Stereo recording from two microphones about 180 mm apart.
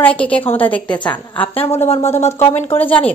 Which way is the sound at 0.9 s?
25° left (ahead or behind).